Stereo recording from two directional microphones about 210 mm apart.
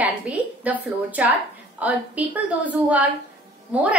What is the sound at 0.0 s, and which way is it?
A woman's voice, 5° right (ahead or behind).